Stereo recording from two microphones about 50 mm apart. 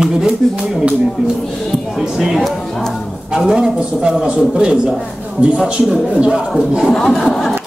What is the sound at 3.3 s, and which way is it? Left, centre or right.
A man's voice, centre.